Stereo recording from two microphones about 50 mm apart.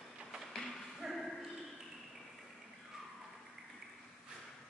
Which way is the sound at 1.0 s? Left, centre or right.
Centre.